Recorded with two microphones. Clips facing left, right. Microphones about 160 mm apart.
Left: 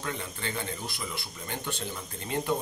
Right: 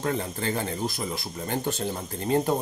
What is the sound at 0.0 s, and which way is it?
Speech, 40° right (ahead or behind).